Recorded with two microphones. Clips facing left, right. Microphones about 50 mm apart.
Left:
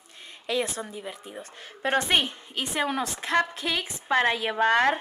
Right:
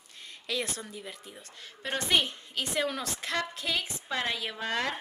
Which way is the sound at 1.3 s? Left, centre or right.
Left.